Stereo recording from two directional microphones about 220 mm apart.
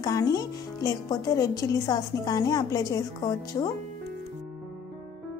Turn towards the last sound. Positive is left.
turn(degrees=15)  # may be behind; listen again after turning